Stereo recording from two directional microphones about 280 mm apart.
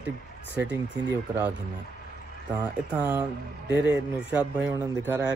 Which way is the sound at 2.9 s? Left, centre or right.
Centre.